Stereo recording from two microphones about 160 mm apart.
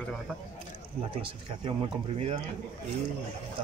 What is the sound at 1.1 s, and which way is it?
Speech, 30° right (ahead or behind).